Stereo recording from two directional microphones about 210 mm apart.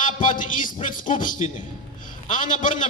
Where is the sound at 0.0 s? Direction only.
40° left (ahead or behind).